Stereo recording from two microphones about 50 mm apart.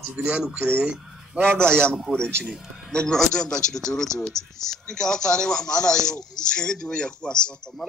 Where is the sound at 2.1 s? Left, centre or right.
Centre.